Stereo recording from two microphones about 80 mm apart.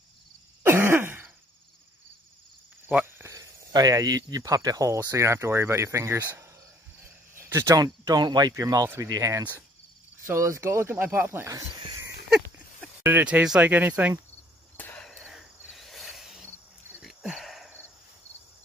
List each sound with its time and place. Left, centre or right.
0.7 s throat clearing: right
3.2 s cricket: right
3.7 s speech: right
7.0 s a sound: right
7.7 s speech: right
8.5 s speech: right
8.8 s speech: right
13.0 s speech: centre
15.0 s a sound: centre